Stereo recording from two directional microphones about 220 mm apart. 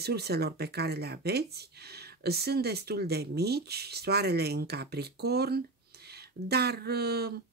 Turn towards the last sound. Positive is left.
turn(degrees=-45)  # may be behind; listen again after turning